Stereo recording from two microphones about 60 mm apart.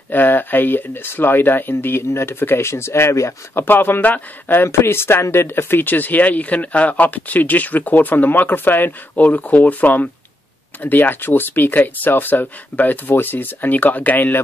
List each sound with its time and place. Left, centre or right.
0.1 s speech: left
3.6 s speech: left
4.6 s speech: left